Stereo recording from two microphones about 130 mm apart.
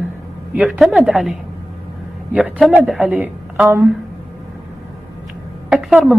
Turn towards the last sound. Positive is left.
turn(degrees=-5)  # may be behind; listen again after turning